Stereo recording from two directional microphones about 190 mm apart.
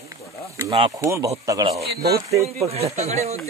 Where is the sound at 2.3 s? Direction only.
35° right (ahead or behind).